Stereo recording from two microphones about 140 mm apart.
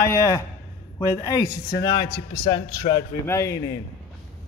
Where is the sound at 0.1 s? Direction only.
25° left (ahead or behind).